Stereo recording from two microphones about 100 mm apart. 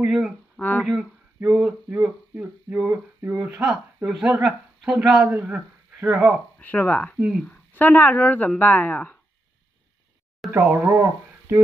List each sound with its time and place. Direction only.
0.0 s speech: 10° right (ahead or behind)
0.6 s speech: 20° left (ahead or behind)
0.8 s speech: 5° right (ahead or behind)
6.6 s speech: 15° left (ahead or behind)
7.2 s speech: 10° right (ahead or behind)
7.4 s speech: 15° left (ahead or behind)
10.5 s speech: 20° right (ahead or behind)